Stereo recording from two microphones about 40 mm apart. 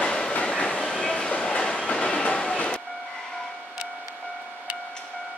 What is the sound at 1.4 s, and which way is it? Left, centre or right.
Train, left.